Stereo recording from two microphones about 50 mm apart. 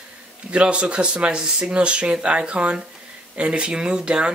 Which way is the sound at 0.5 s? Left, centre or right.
Right.